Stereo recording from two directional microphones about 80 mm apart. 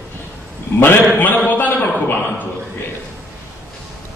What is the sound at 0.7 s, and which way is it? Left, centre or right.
Speech, left.